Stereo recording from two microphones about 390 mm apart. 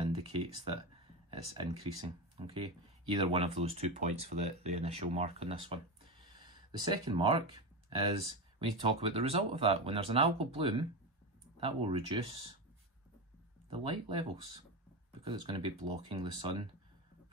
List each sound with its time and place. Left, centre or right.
0.0 s speech: centre
6.8 s speech: centre
13.7 s speech: centre